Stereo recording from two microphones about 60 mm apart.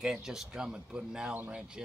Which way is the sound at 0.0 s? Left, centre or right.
Centre.